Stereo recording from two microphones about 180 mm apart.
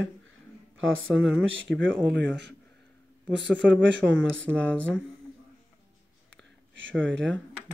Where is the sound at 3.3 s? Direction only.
90° right.